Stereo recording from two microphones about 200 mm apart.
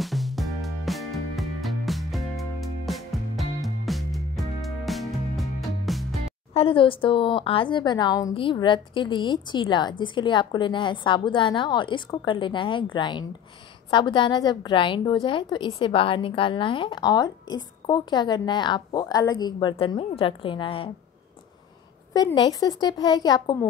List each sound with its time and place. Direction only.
0.0 s music: centre (ahead or behind)
6.5 s a woman's voice: 25° left (ahead or behind)
22.1 s a woman's voice: 20° left (ahead or behind)